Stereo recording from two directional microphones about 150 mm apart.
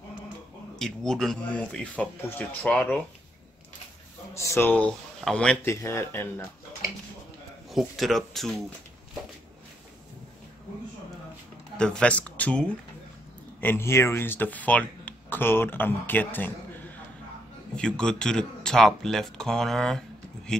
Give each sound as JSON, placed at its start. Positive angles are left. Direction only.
{"t": 0.7, "sound": "speech", "side_deg": 5}
{"t": 4.3, "sound": "speech", "side_deg": 20}
{"t": 5.8, "sound": "speech", "side_deg": 15}
{"t": 7.7, "sound": "speech", "side_deg": 0}
{"t": 11.8, "sound": "speech", "side_deg": 5}
{"t": 17.7, "sound": "speech", "side_deg": 5}